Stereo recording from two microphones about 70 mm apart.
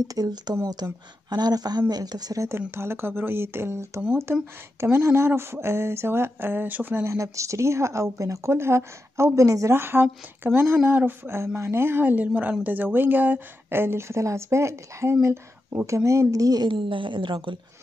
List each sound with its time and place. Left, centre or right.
0.0 s speech: right
2.7 s speech: right
9.8 s a woman's voice: right